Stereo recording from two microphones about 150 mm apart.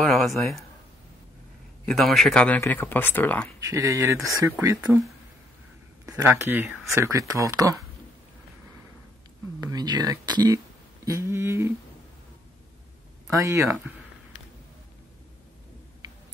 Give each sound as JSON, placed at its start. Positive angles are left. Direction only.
{"t": 0.0, "sound": "speech", "side_deg": 0}
{"t": 1.9, "sound": "speech", "side_deg": 0}
{"t": 3.7, "sound": "speech", "side_deg": -20}
{"t": 6.0, "sound": "speech", "side_deg": -20}
{"t": 9.6, "sound": "speech", "side_deg": -25}
{"t": 11.1, "sound": "humming", "side_deg": -20}
{"t": 13.3, "sound": "speech", "side_deg": -20}